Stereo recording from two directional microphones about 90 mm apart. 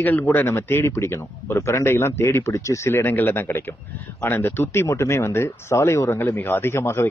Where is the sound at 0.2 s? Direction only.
25° left (ahead or behind).